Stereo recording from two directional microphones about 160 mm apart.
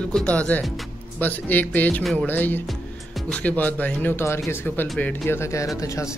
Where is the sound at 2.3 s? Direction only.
10° left (ahead or behind).